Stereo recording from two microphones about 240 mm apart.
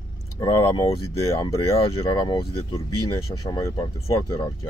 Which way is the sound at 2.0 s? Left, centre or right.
Centre.